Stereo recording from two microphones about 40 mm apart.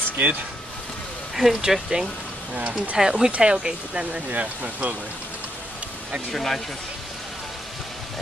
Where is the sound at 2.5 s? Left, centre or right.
Right.